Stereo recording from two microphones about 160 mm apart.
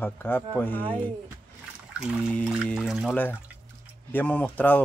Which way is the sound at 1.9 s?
5° right (ahead or behind).